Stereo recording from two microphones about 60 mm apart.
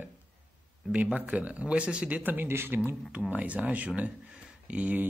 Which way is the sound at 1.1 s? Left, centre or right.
Right.